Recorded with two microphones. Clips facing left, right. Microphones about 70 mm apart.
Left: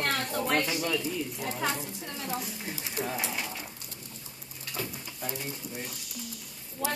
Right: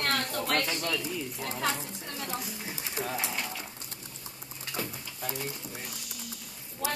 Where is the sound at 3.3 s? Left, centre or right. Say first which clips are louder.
Even; centre.